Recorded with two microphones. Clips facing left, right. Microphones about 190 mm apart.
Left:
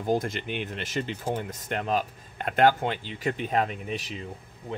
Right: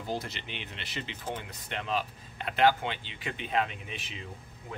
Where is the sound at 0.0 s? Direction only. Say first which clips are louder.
Left 9 dB; 50° left (ahead or behind).